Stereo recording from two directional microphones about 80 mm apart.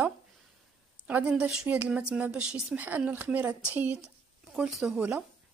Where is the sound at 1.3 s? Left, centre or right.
Centre.